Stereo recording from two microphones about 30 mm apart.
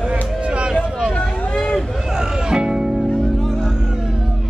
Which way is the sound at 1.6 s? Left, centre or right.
Centre.